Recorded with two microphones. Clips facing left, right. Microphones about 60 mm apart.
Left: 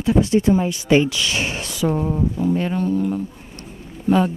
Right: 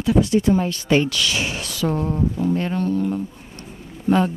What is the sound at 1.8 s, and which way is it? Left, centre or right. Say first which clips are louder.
Speech: left 1 dB; centre.